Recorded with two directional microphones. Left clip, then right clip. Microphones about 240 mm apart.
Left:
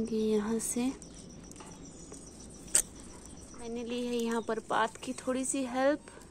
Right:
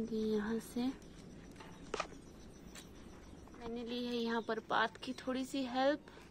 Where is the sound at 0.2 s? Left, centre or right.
Centre.